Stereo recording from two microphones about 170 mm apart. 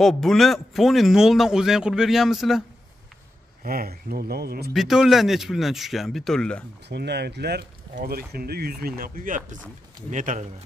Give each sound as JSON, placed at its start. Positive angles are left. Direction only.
{"t": 0.0, "sound": "a man's voice", "side_deg": 0}
{"t": 3.6, "sound": "speech", "side_deg": -60}
{"t": 4.7, "sound": "a man's voice", "side_deg": 0}
{"t": 6.9, "sound": "speech", "side_deg": -80}